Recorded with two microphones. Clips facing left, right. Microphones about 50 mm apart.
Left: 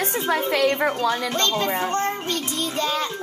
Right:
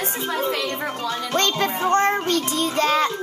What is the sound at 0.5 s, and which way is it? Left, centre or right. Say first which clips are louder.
Music: left 5 dB; left.